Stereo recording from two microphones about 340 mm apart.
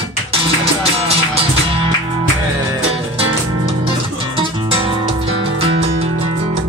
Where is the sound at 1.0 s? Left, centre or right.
Centre.